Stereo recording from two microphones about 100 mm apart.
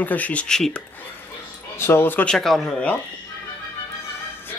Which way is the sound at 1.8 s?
20° left (ahead or behind).